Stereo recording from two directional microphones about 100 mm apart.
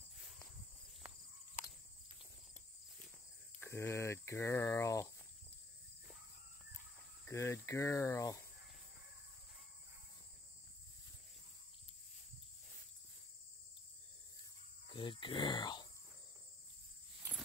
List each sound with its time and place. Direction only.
3.7 s speech: 30° left (ahead or behind)
7.2 s cricket: 25° left (ahead or behind)
14.9 s a sound: 55° left (ahead or behind)